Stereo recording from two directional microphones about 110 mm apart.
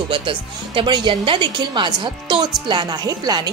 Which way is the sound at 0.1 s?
50° right (ahead or behind).